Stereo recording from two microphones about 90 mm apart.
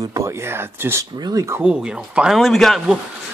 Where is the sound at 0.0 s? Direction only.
40° right (ahead or behind).